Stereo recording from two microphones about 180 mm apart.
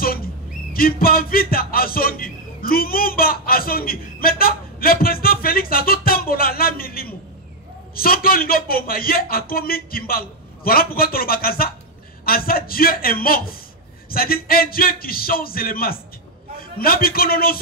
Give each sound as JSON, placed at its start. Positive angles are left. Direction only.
{"t": 0.7, "sound": "a man's voice", "side_deg": 55}